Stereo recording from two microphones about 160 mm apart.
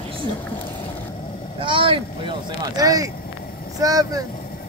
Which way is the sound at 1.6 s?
35° right (ahead or behind).